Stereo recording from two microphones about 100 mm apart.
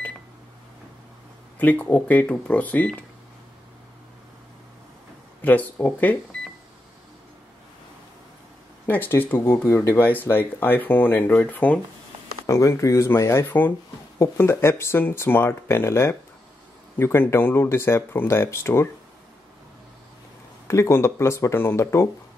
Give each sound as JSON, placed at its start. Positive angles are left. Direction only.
{"t": 1.6, "sound": "speech", "side_deg": 15}
{"t": 5.4, "sound": "speech", "side_deg": 15}
{"t": 8.8, "sound": "speech", "side_deg": 20}
{"t": 12.4, "sound": "speech", "side_deg": 30}
{"t": 20.6, "sound": "speech", "side_deg": 30}